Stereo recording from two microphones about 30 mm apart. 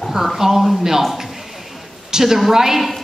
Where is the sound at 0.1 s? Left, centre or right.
Centre.